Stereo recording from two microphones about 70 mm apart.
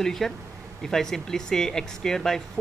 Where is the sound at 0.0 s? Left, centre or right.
Centre.